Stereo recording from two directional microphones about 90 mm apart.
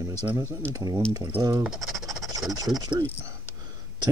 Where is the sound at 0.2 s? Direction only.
30° right (ahead or behind).